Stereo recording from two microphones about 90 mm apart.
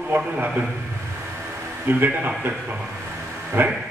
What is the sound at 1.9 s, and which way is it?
Speech, 20° right (ahead or behind).